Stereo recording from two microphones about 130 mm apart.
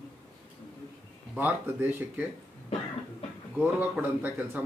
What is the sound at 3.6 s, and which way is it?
Speech, 15° right (ahead or behind).